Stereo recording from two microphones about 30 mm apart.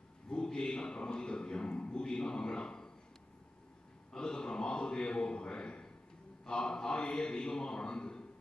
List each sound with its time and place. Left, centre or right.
0.3 s a man's voice: left
4.1 s a man's voice: left
7.1 s a sound: left